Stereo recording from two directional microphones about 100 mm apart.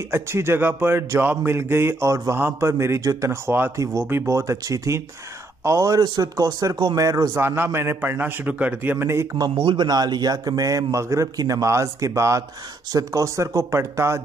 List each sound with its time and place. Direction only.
0.1 s a man's voice: 25° right (ahead or behind)
7.4 s speech: 20° right (ahead or behind)
9.6 s a man's voice: 50° right (ahead or behind); by 14.2 s 25° right (ahead or behind)